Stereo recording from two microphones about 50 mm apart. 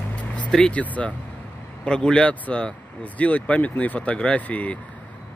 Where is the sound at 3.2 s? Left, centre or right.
Left.